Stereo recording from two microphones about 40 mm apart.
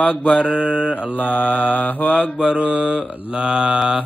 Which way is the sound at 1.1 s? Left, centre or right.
Left.